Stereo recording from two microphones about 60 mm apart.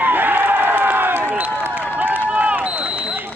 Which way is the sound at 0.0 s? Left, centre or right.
Right.